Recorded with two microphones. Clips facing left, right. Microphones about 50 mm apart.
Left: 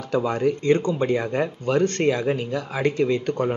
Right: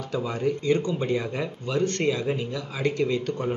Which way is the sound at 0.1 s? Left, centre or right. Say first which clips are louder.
Left 5 dB; left.